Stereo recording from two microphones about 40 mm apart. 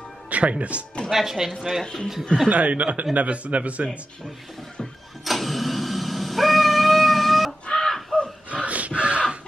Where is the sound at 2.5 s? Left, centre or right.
Right.